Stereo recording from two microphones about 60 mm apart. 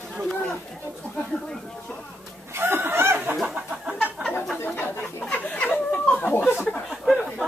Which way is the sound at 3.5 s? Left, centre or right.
Centre.